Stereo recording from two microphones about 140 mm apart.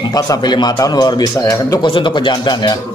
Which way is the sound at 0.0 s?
30° left (ahead or behind).